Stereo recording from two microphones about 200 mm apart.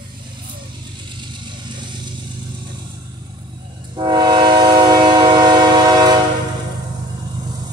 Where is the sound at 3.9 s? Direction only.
20° right (ahead or behind).